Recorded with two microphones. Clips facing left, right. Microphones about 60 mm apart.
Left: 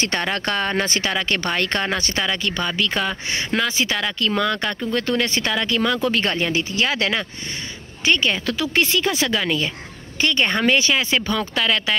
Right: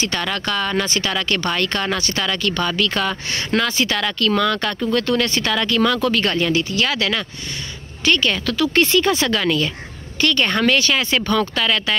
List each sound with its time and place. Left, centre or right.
0.0 s speech: left
8.8 s speech: centre